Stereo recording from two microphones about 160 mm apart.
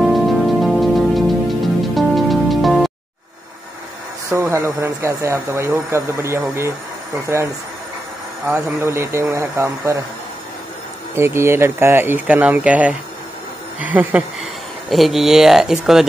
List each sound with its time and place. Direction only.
0.0 s music: centre (ahead or behind)
4.3 s speech: 15° right (ahead or behind)
8.5 s speech: 15° right (ahead or behind)
11.1 s speech: 15° right (ahead or behind)